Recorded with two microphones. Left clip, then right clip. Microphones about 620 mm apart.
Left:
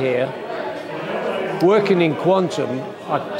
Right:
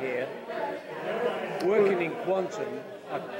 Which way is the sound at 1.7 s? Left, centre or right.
Left.